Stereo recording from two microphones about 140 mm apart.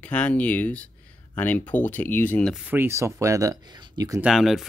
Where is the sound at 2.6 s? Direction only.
15° right (ahead or behind).